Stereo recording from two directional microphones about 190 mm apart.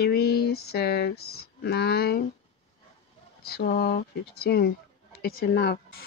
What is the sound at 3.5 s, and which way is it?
Speech, 55° left (ahead or behind).